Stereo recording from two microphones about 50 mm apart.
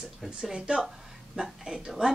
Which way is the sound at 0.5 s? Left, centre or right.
Centre.